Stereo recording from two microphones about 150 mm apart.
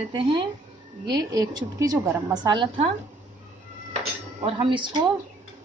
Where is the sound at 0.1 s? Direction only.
35° right (ahead or behind).